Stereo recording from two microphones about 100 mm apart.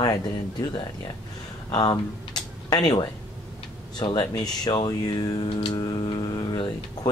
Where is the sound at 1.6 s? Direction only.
45° left (ahead or behind).